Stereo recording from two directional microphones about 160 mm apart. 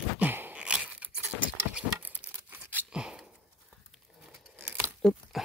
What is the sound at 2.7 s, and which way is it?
Scissors, 10° right (ahead or behind).